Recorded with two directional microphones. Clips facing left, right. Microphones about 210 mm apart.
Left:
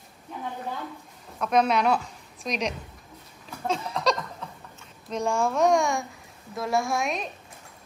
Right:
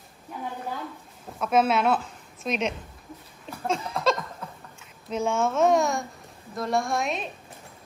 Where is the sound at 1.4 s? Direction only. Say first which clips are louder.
Even; 5° right (ahead or behind).